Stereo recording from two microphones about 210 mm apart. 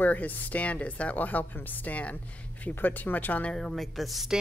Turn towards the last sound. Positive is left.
turn(degrees=0)  # may be behind; listen again after turning